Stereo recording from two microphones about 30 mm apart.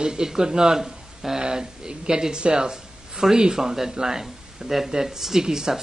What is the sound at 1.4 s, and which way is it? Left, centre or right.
Speech, right.